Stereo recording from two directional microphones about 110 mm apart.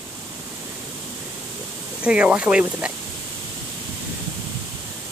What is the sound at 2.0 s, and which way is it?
Speech, 10° right (ahead or behind).